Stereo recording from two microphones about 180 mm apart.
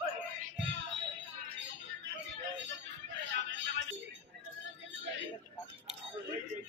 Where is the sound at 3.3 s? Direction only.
75° right (ahead or behind).